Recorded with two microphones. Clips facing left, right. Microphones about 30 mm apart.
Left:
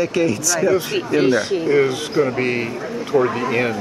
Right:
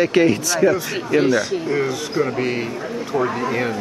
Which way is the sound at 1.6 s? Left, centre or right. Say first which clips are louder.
Left 4 dB; centre.